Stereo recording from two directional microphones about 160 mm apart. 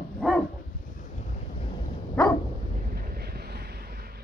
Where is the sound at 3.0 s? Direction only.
80° right.